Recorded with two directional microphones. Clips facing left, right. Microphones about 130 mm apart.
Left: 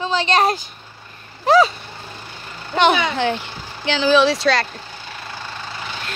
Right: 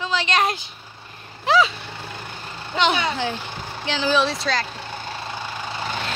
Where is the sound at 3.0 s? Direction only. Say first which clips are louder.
Left 4 dB; 70° left (ahead or behind).